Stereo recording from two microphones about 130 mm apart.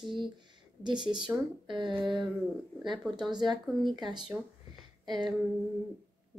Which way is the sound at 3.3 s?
35° right (ahead or behind).